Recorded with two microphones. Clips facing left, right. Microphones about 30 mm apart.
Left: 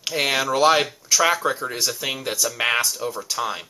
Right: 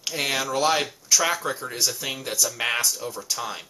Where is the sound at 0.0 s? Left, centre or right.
Centre.